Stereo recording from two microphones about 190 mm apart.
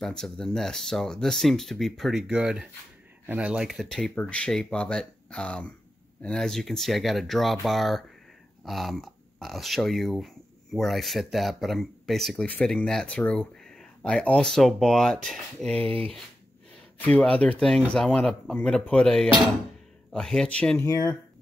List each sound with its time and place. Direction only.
0.0 s speech: centre (ahead or behind)
17.0 s speech: 5° left (ahead or behind)
20.8 s speech: 20° left (ahead or behind)